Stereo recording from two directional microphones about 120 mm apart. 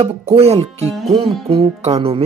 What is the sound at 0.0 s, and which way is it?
Speech, 55° right (ahead or behind).